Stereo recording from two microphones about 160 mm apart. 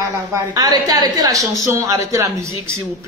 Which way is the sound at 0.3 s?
25° right (ahead or behind).